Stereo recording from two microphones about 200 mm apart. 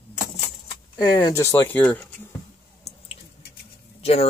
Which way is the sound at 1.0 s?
20° left (ahead or behind).